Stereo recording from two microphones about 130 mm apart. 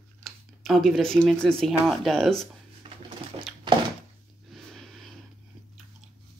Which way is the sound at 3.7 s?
35° right (ahead or behind).